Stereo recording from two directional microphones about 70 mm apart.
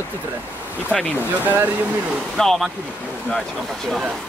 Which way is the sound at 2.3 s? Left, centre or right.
Centre.